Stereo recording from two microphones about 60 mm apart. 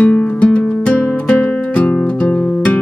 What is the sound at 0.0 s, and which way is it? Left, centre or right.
Music, left.